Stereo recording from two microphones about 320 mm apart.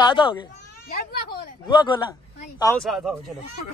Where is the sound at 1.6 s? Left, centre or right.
Centre.